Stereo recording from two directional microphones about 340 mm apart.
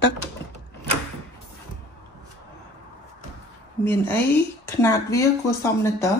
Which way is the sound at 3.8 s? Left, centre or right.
Centre.